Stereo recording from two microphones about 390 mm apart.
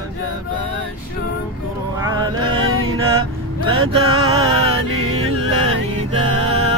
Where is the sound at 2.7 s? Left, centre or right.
Right.